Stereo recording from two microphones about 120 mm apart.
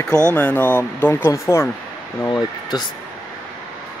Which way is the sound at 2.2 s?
35° left (ahead or behind).